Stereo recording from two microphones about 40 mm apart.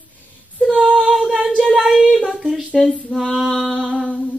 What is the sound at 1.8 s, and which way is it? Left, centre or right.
Child singing, centre.